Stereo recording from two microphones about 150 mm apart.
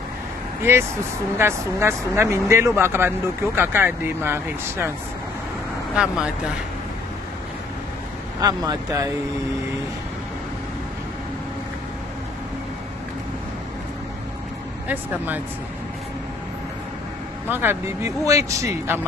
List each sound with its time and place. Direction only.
0.7 s speech: 15° right (ahead or behind)
5.9 s speech: 5° right (ahead or behind)
8.4 s speech: 25° right (ahead or behind)
14.9 s speech: 10° right (ahead or behind)
17.5 s speech: 15° right (ahead or behind)